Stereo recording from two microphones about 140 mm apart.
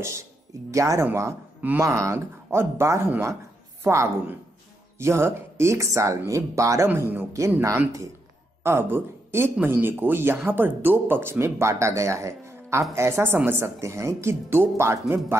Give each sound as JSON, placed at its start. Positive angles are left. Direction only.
{"t": 0.0, "sound": "speech", "side_deg": -20}